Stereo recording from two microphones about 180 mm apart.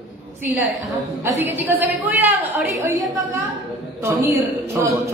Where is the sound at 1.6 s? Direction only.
10° right (ahead or behind).